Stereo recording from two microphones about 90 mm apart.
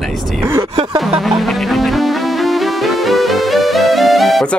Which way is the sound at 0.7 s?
70° right (ahead or behind).